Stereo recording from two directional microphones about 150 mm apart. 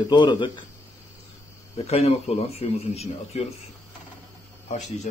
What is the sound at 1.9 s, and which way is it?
Speech, 45° left (ahead or behind).